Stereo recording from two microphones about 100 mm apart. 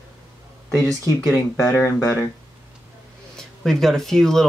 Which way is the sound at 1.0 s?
30° left (ahead or behind).